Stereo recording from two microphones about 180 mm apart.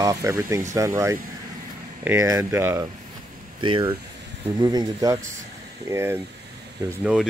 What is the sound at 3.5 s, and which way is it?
Speech, 25° right (ahead or behind).